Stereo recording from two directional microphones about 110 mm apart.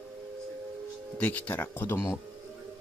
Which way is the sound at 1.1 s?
15° left (ahead or behind).